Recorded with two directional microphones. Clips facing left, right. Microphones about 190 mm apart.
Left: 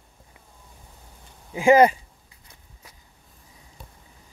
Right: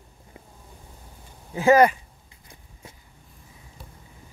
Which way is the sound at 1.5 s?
20° left (ahead or behind).